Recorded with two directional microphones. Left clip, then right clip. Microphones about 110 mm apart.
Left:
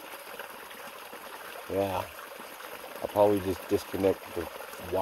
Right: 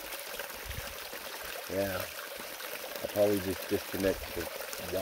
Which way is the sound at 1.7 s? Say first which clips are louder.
Left 4 dB; 35° left (ahead or behind).